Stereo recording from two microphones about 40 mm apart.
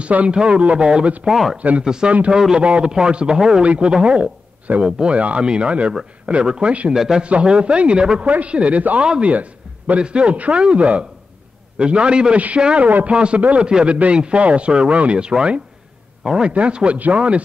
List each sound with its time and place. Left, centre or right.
0.0 s speech: right
0.3 s speech: right
1.3 s speech: centre
1.6 s a man's voice: right
1.9 s speech: centre
3.3 s speech: centre
3.6 s speech: right
7.2 s speech: right
8.3 s a man's voice: right
9.3 s a sound: right
10.0 s a man's voice: right
16.3 s speech: right